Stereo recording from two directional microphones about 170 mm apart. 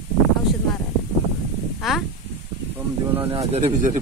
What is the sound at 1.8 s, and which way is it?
Speech, centre (ahead or behind).